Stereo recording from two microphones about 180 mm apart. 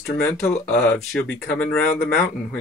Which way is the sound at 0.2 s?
5° left (ahead or behind).